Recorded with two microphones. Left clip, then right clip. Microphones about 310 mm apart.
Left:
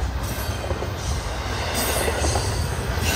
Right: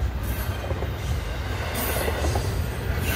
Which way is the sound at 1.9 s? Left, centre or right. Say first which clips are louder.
Left 2 dB; left.